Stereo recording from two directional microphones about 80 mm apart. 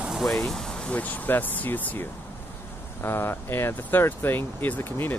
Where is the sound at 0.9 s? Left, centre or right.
Left.